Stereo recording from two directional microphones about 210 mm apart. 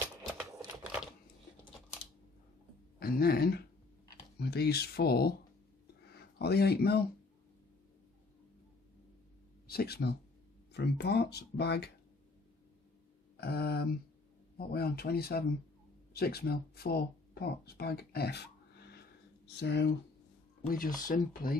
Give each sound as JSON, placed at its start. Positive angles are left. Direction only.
{"t": 3.0, "sound": "speech", "side_deg": 45}
{"t": 9.7, "sound": "speech", "side_deg": 45}
{"t": 13.4, "sound": "speech", "side_deg": 50}
{"t": 20.6, "sound": "speech", "side_deg": 40}